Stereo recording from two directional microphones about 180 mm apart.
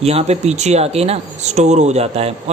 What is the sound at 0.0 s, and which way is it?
Speech, 35° right (ahead or behind).